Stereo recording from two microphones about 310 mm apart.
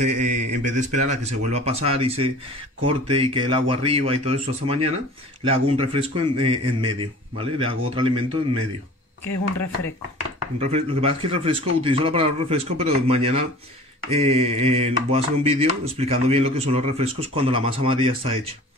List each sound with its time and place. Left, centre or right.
0.0 s mantra: right
5.5 s a man's voice: centre
10.6 s mantra: centre